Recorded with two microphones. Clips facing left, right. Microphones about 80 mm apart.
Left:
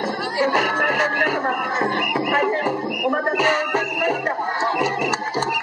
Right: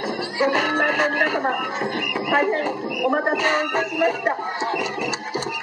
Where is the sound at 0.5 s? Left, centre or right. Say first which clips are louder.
Left 1 dB; centre.